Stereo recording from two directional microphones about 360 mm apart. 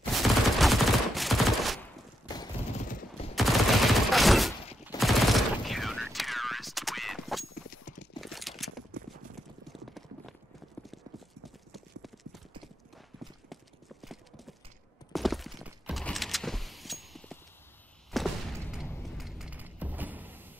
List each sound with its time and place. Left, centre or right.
0.1 s fusillade: centre
2.2 s gunshot: centre
3.3 s fusillade: centre
7.7 s clip-clop: left
8.2 s a sound: centre
9.7 s clip-clop: centre
11.4 s clip-clop: centre
14.0 s clip-clop: centre
15.1 s a sound: centre